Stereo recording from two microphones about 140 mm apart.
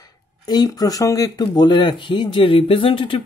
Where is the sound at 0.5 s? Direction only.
30° left (ahead or behind).